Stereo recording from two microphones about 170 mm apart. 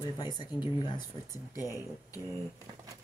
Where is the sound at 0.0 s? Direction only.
25° left (ahead or behind).